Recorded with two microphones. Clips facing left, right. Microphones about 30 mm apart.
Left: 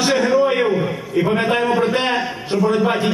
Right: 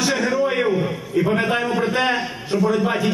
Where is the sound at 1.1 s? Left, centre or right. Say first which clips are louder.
Left 1 dB; left.